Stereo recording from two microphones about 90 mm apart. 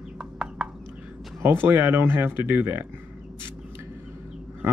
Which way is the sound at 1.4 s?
25° right (ahead or behind).